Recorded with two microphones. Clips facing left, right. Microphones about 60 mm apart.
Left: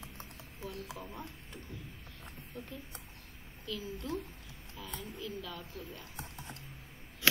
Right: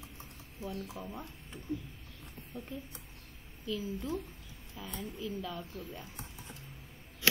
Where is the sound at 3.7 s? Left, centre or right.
Centre.